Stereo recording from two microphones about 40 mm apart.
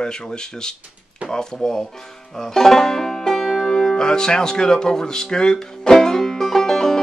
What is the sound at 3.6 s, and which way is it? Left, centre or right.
Music, centre.